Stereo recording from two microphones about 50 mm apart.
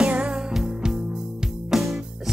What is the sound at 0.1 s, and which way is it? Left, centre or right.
Music, centre.